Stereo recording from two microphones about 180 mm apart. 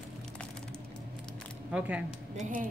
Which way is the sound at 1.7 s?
5° right (ahead or behind).